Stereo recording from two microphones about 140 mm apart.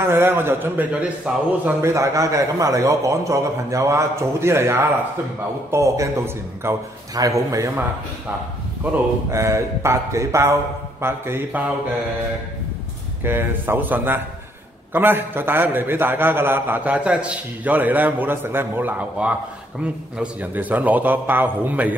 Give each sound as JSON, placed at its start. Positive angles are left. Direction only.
{"t": 0.0, "sound": "a man's voice", "side_deg": -15}
{"t": 9.3, "sound": "a man's voice", "side_deg": -20}
{"t": 13.2, "sound": "a man's voice", "side_deg": -15}